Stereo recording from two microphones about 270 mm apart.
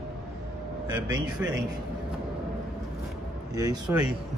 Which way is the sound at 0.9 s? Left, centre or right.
Centre.